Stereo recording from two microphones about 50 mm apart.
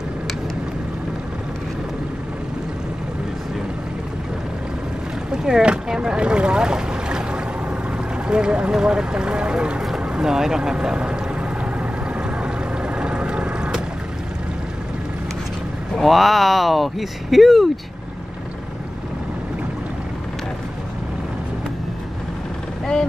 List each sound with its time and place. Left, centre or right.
5.3 s speech: centre
9.9 s boat: centre
16.0 s speech: centre